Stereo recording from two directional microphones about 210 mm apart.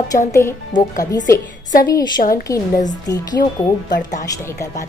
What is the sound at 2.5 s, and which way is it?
Speech, 15° left (ahead or behind).